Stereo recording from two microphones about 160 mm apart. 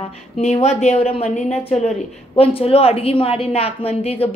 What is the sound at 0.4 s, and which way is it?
A woman's voice, 40° left (ahead or behind).